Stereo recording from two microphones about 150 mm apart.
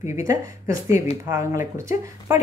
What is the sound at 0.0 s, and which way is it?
Speech, 55° left (ahead or behind).